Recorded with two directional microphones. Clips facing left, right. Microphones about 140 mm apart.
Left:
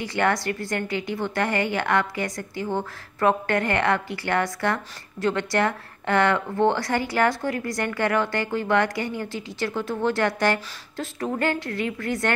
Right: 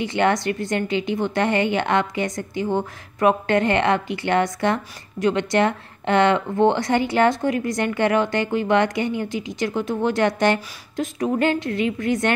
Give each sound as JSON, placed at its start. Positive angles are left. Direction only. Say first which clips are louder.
{"t": 0.0, "sound": "a woman's voice", "louder": "right 4 dB", "side_deg": -20}